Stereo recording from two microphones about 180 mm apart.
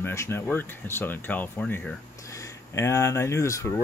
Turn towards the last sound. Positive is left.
turn(degrees=15)  # may be behind; listen again after turning